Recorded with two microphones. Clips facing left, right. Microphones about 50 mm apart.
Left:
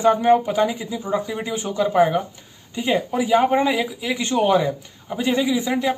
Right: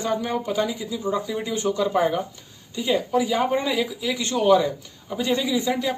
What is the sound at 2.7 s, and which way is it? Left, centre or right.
A woman's voice, left.